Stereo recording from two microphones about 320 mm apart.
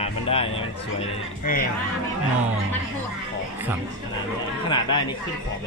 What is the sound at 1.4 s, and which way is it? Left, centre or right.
Speech, left.